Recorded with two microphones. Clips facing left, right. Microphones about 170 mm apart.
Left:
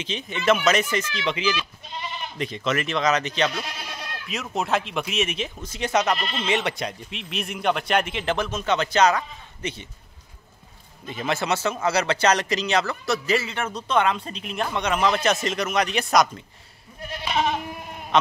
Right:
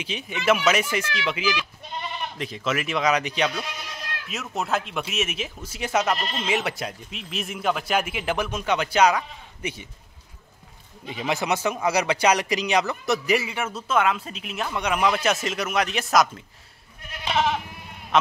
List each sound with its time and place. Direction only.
0.0 s speech: 10° right (ahead or behind)
11.1 s speech: 15° right (ahead or behind)
17.3 s goat: 75° right (ahead or behind)
18.1 s sheep: 5° right (ahead or behind)